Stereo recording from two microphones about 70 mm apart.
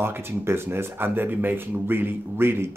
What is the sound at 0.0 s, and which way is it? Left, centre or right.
Speech, right.